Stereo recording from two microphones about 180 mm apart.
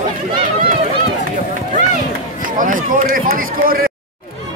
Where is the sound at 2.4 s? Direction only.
50° right (ahead or behind).